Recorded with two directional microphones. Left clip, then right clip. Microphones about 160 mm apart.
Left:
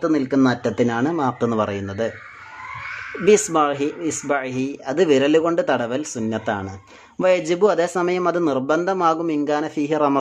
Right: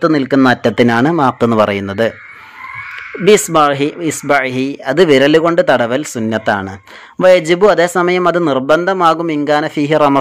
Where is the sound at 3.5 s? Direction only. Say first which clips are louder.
Right 8 dB; 25° right (ahead or behind).